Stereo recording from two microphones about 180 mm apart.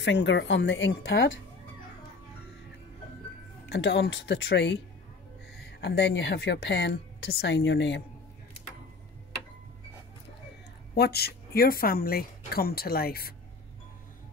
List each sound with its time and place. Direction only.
0.0 s speech: 80° left
3.6 s a woman's voice: 75° left (ahead or behind)
11.0 s speech: 60° left (ahead or behind)